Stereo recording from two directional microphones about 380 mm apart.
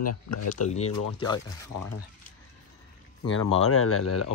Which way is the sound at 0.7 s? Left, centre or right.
Centre.